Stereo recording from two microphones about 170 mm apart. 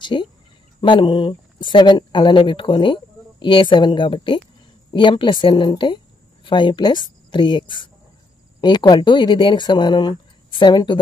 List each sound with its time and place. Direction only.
0.0 s a woman's voice: 25° left (ahead or behind)